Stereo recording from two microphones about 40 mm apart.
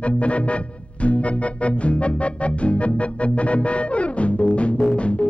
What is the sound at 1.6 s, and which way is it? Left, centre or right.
Music, left.